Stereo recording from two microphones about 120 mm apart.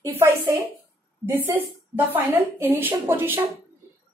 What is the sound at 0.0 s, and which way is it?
Speech, 20° right (ahead or behind).